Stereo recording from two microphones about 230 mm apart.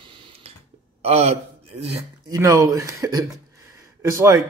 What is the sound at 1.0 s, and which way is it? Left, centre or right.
Speech, right.